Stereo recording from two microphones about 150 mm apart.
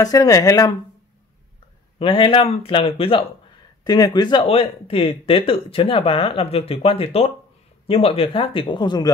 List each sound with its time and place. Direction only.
0.0 s speech: 25° left (ahead or behind)
2.0 s speech: 35° left (ahead or behind)
3.8 s speech: 25° left (ahead or behind)